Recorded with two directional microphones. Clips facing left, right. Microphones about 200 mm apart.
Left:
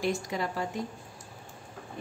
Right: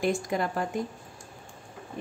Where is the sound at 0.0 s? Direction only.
50° right (ahead or behind).